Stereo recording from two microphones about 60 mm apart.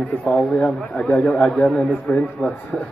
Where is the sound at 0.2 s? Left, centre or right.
Centre.